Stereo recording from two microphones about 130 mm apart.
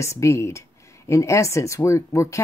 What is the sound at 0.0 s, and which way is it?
Speech, 20° left (ahead or behind).